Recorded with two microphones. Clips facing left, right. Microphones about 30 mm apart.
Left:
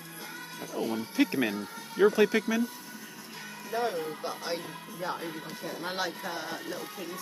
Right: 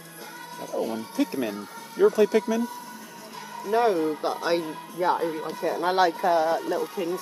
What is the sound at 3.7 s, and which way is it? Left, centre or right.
Speech, right.